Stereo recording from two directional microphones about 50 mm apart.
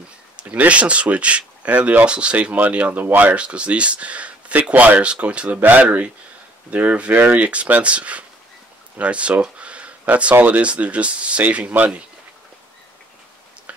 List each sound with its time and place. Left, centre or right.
0.7 s speech: right
3.4 s speech: right
5.9 s speech: right
8.9 s a sound: right
10.4 s speech: right